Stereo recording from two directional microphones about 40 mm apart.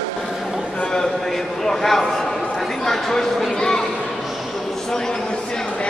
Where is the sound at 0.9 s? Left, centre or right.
Centre.